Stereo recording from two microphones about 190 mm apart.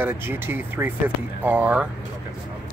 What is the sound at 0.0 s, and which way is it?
Speech, 10° right (ahead or behind).